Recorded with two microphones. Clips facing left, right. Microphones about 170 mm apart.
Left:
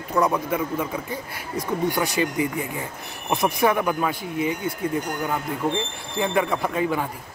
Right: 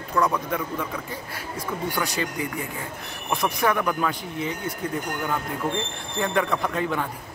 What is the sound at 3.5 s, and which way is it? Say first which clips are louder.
Speech: left 2 dB; 15° left (ahead or behind).